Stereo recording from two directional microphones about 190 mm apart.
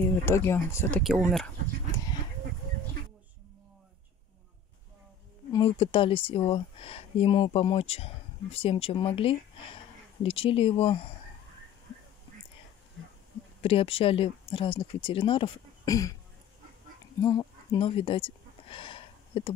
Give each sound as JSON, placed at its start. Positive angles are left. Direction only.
{"t": 0.2, "sound": "speech", "side_deg": 15}
{"t": 1.0, "sound": "speech", "side_deg": -5}
{"t": 5.5, "sound": "speech", "side_deg": 30}
{"t": 13.6, "sound": "speech", "side_deg": 30}
{"t": 17.2, "sound": "a sound", "side_deg": 20}